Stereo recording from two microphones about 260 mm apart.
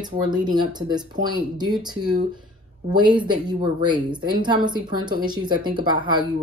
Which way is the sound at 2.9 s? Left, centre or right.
Centre.